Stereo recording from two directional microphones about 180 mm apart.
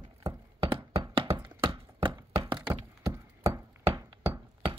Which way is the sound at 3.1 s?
15° right (ahead or behind).